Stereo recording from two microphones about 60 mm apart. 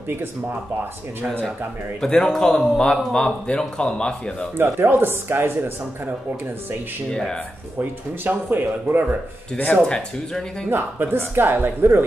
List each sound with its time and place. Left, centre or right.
2.0 s speech: centre
4.6 s speech: right
7.1 s speech: centre
7.8 s speech: right
9.8 s speech: centre
10.7 s speech: right